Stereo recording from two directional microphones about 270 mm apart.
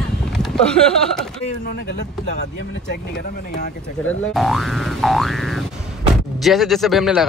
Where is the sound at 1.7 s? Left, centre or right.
Left.